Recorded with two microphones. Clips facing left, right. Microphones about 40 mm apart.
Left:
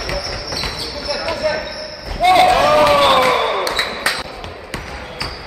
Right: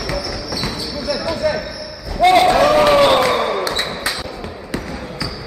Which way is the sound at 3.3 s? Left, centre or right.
Left.